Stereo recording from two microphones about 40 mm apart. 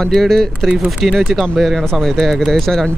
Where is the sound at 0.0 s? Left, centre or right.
Centre.